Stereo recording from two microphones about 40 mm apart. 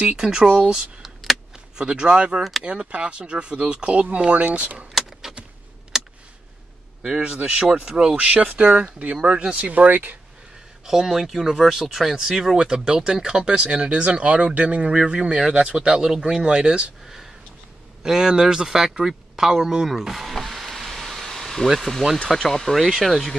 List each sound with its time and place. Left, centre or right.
0.0 s speech: right
5.3 s a sound: centre
7.2 s speech: right
7.8 s speech: centre
8.2 s speech: right
10.9 s speech: centre
18.0 s speech: centre
19.9 s speech: centre
20.3 s vehicle: centre
21.6 s speech: centre